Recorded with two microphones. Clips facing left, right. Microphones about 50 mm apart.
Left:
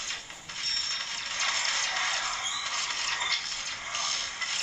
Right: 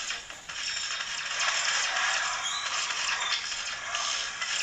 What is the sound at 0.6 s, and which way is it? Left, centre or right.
Music, right.